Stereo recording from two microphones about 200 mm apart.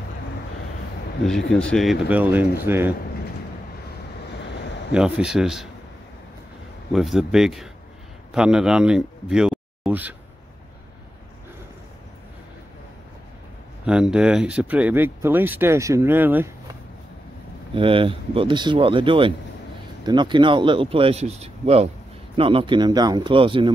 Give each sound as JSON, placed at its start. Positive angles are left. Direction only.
{"t": 1.2, "sound": "speech", "side_deg": 5}
{"t": 4.6, "sound": "a sound", "side_deg": 60}
{"t": 4.9, "sound": "speech", "side_deg": -5}
{"t": 6.9, "sound": "a man's voice", "side_deg": 0}
{"t": 13.8, "sound": "speech", "side_deg": -5}
{"t": 17.7, "sound": "speech", "side_deg": -25}